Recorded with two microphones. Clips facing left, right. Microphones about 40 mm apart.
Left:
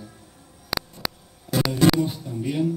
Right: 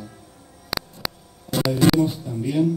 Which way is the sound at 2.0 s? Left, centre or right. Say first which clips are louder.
Right 4 dB; centre.